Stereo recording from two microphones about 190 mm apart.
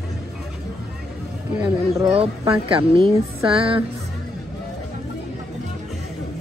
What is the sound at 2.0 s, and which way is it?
A woman's voice, 30° right (ahead or behind).